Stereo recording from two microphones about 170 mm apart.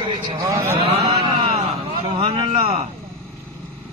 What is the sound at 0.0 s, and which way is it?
Speech, 25° right (ahead or behind).